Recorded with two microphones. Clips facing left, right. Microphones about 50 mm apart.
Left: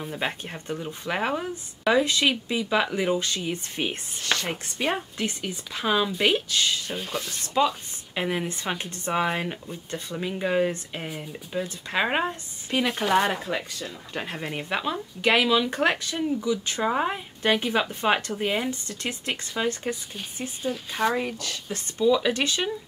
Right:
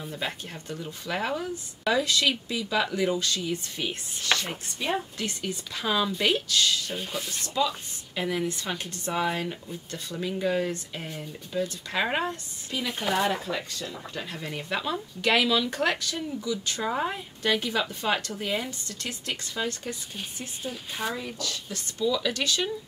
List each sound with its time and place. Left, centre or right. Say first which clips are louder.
0.0 s speech: left 3 dB; left
4.4 s speech: left 4 dB; left
5.1 s speech: left 2 dB; centre
6.9 s speech: left 2 dB; centre
7.2 s speech: left 5 dB; left
12.7 s speech: left 5 dB; left
14.7 s speech: left 1 dB; centre
20.6 s speech: left 7 dB; centre
21.1 s speech: left 5 dB; left